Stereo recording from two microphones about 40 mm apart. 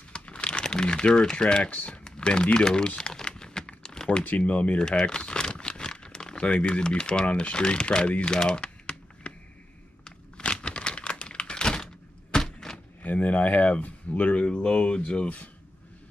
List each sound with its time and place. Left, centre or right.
0.1 s crumpling: left
1.7 s speech: left
2.0 s speech: left
3.3 s typing: centre
4.4 s speech: left
4.7 s crumpling: left
6.4 s speech: left
8.3 s typing: left
10.0 s crumpling: left
13.0 s speech: left